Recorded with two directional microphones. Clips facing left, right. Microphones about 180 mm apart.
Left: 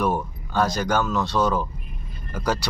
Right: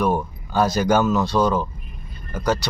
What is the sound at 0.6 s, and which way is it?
Speech, 5° right (ahead or behind).